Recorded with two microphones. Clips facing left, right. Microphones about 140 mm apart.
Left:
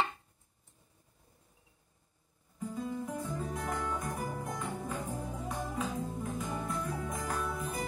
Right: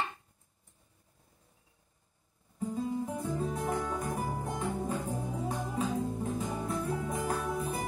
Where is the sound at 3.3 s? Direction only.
35° right (ahead or behind).